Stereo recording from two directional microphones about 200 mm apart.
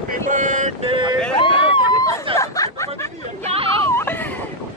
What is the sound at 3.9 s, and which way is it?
Baby cry, 10° left (ahead or behind).